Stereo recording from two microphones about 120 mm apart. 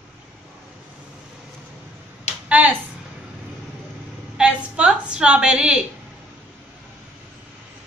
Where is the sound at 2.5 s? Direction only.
10° right (ahead or behind).